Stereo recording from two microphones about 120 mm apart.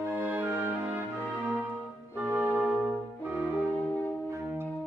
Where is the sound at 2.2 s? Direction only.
10° right (ahead or behind).